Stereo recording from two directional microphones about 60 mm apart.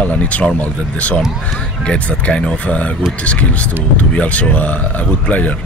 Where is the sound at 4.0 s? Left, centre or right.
Left.